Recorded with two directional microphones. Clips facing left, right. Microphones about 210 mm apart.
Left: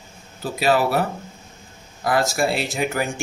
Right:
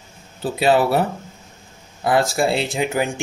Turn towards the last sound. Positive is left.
turn(degrees=-20)  # may be behind; listen again after turning